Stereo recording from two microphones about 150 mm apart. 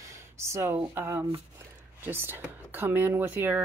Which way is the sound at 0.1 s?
20° right (ahead or behind).